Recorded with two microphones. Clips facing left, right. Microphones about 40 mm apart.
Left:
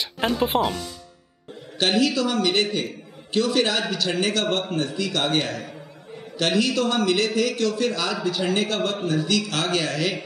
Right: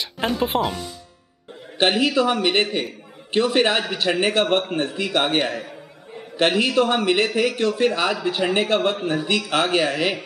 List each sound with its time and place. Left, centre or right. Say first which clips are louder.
0.0 s speech: even; centre
1.8 s a man's voice: right 3 dB; right